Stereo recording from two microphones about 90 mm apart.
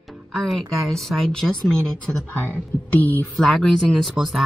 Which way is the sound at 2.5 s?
15° left (ahead or behind).